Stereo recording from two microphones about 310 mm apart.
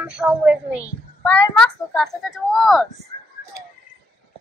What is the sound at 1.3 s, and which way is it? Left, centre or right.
A child's voice, centre.